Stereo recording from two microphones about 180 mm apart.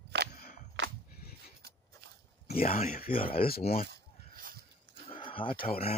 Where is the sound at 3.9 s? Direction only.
55° right (ahead or behind).